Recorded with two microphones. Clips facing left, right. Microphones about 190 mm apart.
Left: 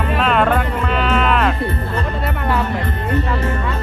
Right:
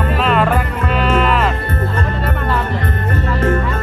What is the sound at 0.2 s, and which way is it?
Music, centre (ahead or behind).